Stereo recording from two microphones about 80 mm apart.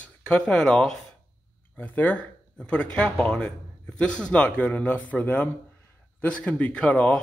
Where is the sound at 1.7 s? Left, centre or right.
Left.